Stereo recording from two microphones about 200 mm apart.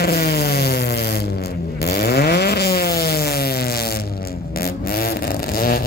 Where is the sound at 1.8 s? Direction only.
55° left (ahead or behind).